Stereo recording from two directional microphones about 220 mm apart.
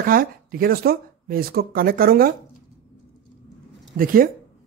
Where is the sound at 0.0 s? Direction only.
40° right (ahead or behind).